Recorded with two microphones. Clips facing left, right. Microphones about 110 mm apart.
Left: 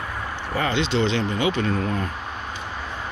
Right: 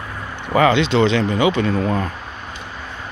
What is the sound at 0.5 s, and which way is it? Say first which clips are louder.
Speech: right 8 dB; 80° right.